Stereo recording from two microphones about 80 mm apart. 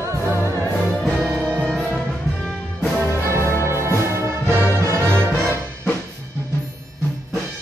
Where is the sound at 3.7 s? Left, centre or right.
Right.